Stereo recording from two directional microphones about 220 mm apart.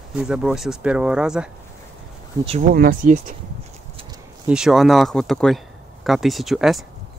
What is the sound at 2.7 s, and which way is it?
Speech, 40° right (ahead or behind).